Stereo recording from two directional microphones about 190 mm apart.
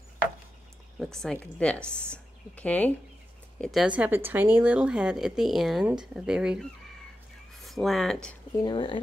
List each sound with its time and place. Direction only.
0.9 s speech: centre (ahead or behind)
8.6 s speech: 25° left (ahead or behind)